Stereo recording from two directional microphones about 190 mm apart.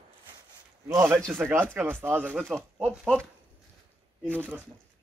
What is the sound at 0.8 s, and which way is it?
Speech, 10° right (ahead or behind).